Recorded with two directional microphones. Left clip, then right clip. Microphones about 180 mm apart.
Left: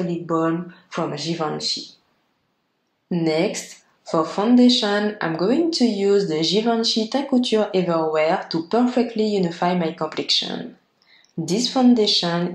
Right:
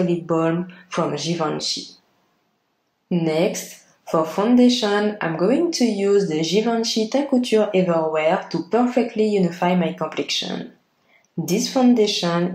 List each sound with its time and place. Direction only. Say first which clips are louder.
0.3 s speech: right 1 dB; 10° left (ahead or behind)
3.1 s speech: right 1 dB; 20° left (ahead or behind)
11.4 s speech: even; 20° left (ahead or behind)